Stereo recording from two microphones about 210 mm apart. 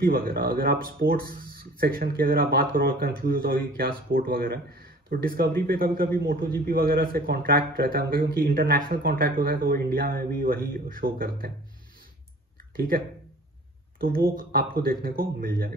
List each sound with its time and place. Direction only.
0.0 s speech: 45° right (ahead or behind)
12.7 s speech: 45° right (ahead or behind)